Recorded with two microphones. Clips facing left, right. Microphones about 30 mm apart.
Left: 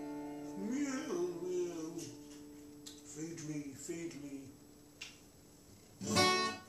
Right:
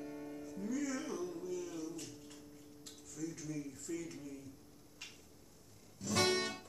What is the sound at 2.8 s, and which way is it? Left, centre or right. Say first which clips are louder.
Music: right 2 dB; centre.